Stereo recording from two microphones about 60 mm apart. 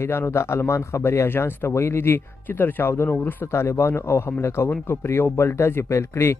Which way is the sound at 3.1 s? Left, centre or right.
Left.